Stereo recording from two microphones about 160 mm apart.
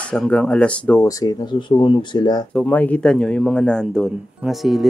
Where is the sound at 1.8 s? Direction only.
30° left (ahead or behind).